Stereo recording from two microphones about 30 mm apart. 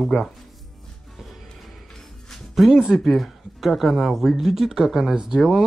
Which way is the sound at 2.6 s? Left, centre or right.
Centre.